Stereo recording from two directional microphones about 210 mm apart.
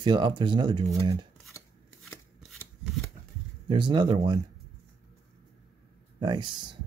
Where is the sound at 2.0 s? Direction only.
5° left (ahead or behind).